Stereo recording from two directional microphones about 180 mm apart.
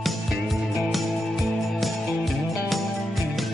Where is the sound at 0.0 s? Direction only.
Centre (ahead or behind).